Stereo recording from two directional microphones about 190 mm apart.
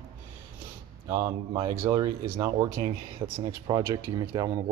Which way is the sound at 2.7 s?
35° right (ahead or behind).